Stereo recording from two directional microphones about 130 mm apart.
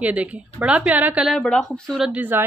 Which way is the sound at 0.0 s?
10° right (ahead or behind).